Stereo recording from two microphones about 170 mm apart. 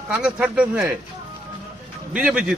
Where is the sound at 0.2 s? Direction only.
5° right (ahead or behind).